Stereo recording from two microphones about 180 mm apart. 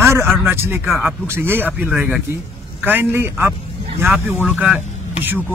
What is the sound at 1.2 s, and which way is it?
Speech, 15° right (ahead or behind).